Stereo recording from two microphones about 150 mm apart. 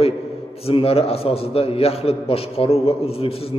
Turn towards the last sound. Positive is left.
turn(degrees=40)  # may be behind; listen again after turning